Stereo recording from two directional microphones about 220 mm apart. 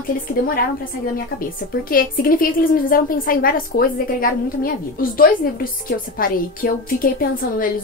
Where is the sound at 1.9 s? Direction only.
40° left (ahead or behind).